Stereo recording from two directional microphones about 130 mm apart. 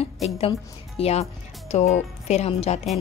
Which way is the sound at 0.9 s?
50° left (ahead or behind).